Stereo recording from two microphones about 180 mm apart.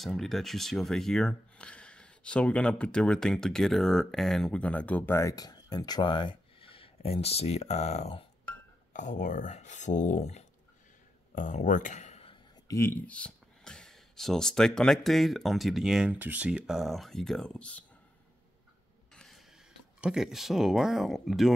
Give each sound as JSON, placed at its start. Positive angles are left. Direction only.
{"t": 0.0, "sound": "speech", "side_deg": 0}
{"t": 12.6, "sound": "speech", "side_deg": 15}
{"t": 19.1, "sound": "mechanisms", "side_deg": 0}
{"t": 20.0, "sound": "speech", "side_deg": -5}